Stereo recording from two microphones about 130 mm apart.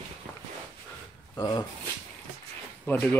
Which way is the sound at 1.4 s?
30° left (ahead or behind).